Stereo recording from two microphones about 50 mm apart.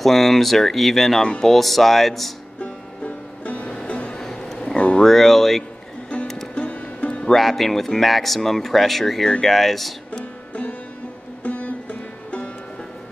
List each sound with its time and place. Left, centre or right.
0.0 s speech: centre
2.6 s music: left
4.2 s a sound: centre
4.7 s a sound: left
5.0 s speech: centre
6.2 s music: centre
6.5 s music: left
7.2 s speech: centre
10.5 s music: left